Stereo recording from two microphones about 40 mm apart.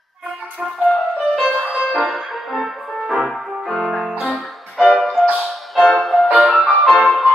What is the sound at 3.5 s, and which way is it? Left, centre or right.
Music, centre.